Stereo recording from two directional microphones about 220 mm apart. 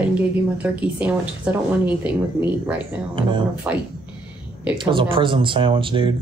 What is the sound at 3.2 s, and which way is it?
Speech, 20° right (ahead or behind).